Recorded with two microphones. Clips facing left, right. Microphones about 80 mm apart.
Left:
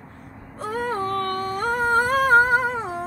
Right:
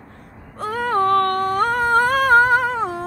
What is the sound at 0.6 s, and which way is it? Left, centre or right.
Humming, right.